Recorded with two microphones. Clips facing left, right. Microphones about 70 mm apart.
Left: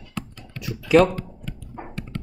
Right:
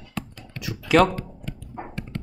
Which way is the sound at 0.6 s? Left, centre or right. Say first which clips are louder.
Left 2 dB; right.